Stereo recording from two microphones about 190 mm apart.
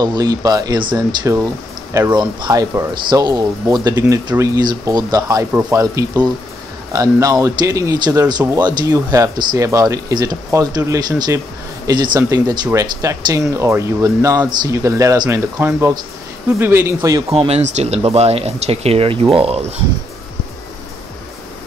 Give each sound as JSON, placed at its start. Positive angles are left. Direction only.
{"t": 0.0, "sound": "speech", "side_deg": -20}
{"t": 17.3, "sound": "speech", "side_deg": -30}